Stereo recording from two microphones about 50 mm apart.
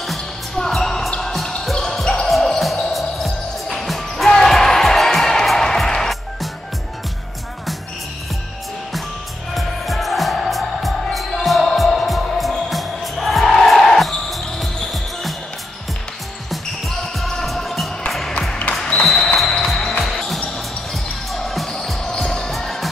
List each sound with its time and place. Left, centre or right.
0.6 s music: centre
1.6 s basketball bounce: centre
2.2 s music: centre
9.5 s music: centre
16.4 s basketball bounce: centre
18.7 s music: left
19.0 s music: centre
20.5 s basketball bounce: centre